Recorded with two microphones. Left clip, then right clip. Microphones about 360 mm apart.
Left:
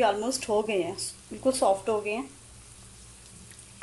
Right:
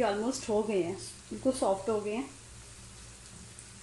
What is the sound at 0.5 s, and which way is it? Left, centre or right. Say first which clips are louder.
Speech: left 3 dB; left.